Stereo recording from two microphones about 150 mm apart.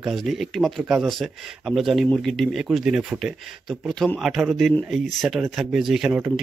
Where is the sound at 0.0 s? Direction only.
Centre (ahead or behind).